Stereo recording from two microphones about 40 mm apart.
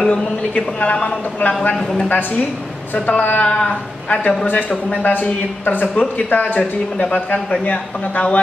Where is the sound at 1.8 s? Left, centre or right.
Centre.